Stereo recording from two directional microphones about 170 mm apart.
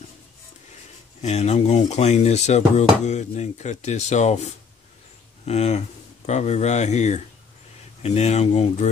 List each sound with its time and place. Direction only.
1.2 s speech: 40° left (ahead or behind)